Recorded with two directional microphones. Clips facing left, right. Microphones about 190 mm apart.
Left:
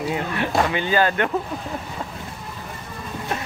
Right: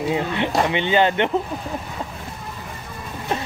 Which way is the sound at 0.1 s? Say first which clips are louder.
Right 2 dB; 20° right (ahead or behind).